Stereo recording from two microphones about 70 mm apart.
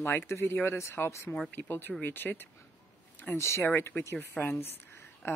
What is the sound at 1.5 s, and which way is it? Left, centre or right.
Speech, left.